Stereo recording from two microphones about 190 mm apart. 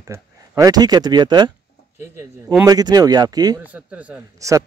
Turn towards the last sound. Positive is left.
turn(degrees=-10)  # may be behind; listen again after turning